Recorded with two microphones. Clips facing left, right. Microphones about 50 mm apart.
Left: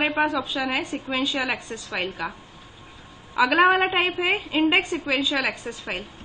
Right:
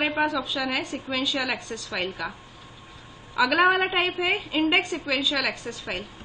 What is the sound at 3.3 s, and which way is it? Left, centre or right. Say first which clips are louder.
A woman's voice: left 2 dB; centre.